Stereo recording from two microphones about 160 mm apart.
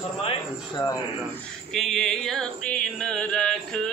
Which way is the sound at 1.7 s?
Centre (ahead or behind).